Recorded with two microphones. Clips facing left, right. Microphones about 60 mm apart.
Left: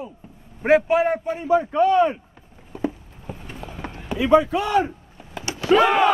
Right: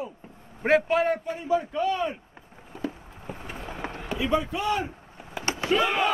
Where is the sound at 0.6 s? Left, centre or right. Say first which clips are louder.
Left 4 dB; centre.